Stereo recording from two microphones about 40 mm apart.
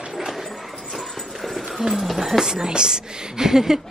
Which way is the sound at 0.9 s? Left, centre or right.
Centre.